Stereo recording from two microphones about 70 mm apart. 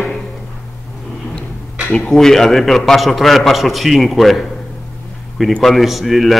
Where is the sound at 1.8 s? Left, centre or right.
Centre.